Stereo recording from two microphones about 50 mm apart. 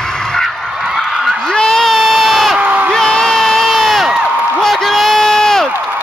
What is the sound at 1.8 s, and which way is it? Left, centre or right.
Crowd, centre.